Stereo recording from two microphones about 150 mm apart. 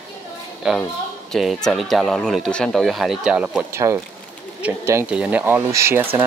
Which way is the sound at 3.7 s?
15° right (ahead or behind).